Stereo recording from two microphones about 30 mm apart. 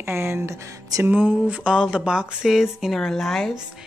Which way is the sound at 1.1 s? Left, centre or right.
Right.